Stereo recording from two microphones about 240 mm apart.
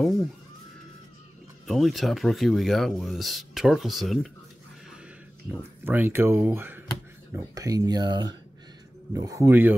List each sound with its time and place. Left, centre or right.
1.7 s speech: centre
5.5 s speech: centre